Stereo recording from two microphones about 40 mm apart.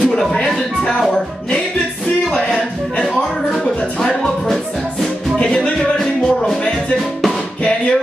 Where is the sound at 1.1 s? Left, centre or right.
Left.